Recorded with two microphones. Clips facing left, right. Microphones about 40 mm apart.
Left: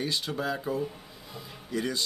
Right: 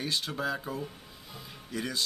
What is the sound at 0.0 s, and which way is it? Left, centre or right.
Speech, centre.